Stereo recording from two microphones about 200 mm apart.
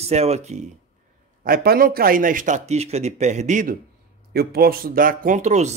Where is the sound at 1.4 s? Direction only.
50° right (ahead or behind).